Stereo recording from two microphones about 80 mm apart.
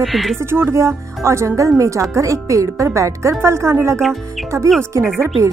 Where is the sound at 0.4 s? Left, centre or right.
Right.